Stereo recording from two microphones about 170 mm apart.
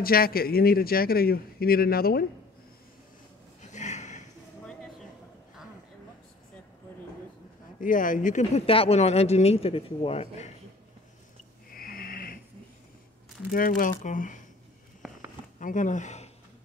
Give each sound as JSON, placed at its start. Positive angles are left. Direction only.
{"t": 0.0, "sound": "a man's voice", "side_deg": 60}
{"t": 3.6, "sound": "a sound", "side_deg": 45}
{"t": 7.8, "sound": "speech", "side_deg": 55}
{"t": 11.7, "sound": "snoring", "side_deg": 60}
{"t": 13.5, "sound": "speech", "side_deg": 55}
{"t": 15.6, "sound": "speech", "side_deg": 50}